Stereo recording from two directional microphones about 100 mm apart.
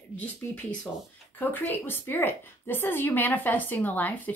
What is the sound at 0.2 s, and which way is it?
Speech, 15° left (ahead or behind).